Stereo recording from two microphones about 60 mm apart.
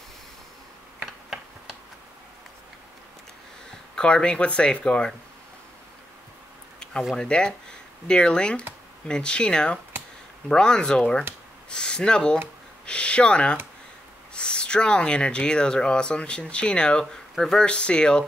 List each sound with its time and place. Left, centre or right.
3.9 s speech: centre
6.8 s a sound: centre
7.2 s speech: centre